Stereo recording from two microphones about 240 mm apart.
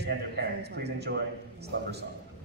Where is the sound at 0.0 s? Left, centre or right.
Right.